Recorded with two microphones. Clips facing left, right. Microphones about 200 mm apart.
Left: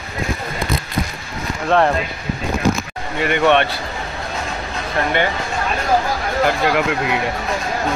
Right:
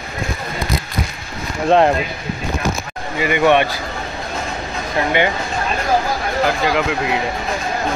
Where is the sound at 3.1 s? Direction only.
5° right (ahead or behind).